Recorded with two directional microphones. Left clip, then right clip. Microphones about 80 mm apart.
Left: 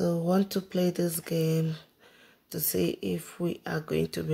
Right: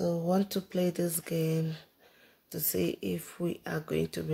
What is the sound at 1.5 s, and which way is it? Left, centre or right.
Speech, left.